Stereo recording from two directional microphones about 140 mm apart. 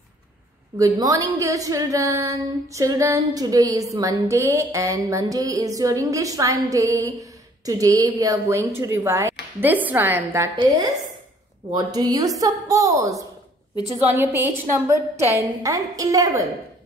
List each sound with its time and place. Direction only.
0.7 s a woman's voice: 25° right (ahead or behind)
11.7 s a woman's voice: 30° right (ahead or behind)